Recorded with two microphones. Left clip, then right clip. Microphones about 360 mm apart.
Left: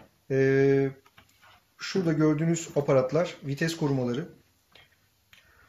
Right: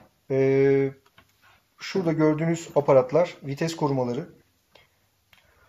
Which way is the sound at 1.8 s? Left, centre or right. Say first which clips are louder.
Right 3 dB; centre.